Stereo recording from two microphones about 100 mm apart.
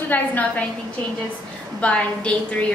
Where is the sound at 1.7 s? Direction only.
15° left (ahead or behind).